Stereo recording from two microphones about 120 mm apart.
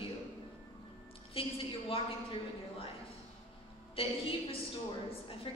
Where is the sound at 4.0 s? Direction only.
50° left (ahead or behind).